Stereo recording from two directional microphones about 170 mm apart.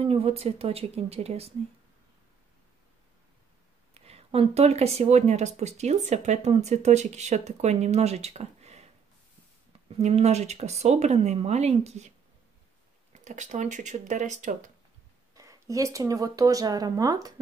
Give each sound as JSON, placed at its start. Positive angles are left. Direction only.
{"t": 0.0, "sound": "speech", "side_deg": -35}
{"t": 3.9, "sound": "speech", "side_deg": -35}
{"t": 13.1, "sound": "speech", "side_deg": -45}
{"t": 15.3, "sound": "speech", "side_deg": -20}